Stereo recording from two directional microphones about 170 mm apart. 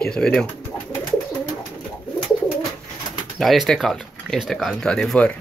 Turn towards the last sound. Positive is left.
turn(degrees=5)  # may be behind; listen again after turning